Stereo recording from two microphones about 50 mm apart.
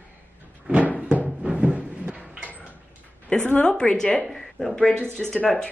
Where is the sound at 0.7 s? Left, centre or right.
Right.